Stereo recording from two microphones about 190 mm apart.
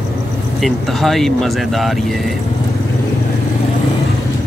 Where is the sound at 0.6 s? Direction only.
Centre (ahead or behind).